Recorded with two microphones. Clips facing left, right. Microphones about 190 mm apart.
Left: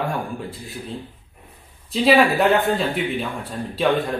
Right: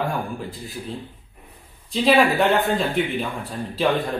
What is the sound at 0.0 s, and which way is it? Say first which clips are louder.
A man's voice: even; centre (ahead or behind).